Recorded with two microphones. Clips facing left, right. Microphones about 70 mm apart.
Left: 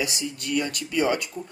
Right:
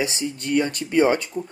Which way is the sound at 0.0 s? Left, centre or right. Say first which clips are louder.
Right 4 dB; right.